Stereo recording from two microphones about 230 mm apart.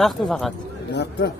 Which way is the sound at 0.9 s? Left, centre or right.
Left.